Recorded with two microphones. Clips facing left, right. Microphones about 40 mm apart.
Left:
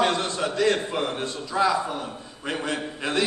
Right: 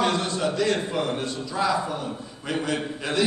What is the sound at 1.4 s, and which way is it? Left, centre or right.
A man's voice, left.